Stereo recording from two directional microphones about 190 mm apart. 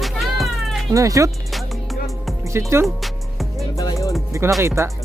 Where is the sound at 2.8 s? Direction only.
Centre (ahead or behind).